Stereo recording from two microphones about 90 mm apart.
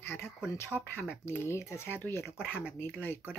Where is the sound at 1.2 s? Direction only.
25° left (ahead or behind).